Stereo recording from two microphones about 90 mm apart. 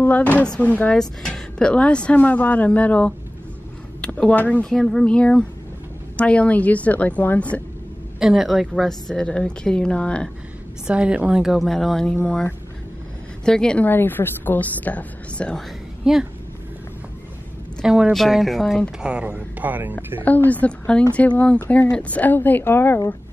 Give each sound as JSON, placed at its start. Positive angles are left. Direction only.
{"t": 0.0, "sound": "a woman's voice", "side_deg": 20}
{"t": 4.6, "sound": "a woman's voice", "side_deg": 5}
{"t": 8.2, "sound": "a woman's voice", "side_deg": -5}
{"t": 10.9, "sound": "speech", "side_deg": -10}
{"t": 13.5, "sound": "a woman's voice", "side_deg": 10}
{"t": 13.8, "sound": "a woman's voice", "side_deg": 20}
{"t": 16.0, "sound": "speech", "side_deg": -5}
{"t": 17.8, "sound": "speech", "side_deg": -10}
{"t": 19.0, "sound": "speech", "side_deg": -10}
{"t": 20.2, "sound": "a woman's voice", "side_deg": 20}